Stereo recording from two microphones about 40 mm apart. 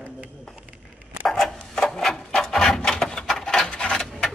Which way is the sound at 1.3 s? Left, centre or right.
Centre.